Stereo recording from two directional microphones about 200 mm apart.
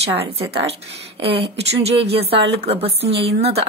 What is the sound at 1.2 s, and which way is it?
A woman's voice, 30° right (ahead or behind).